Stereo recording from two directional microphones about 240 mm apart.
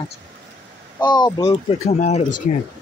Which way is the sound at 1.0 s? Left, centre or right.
Centre.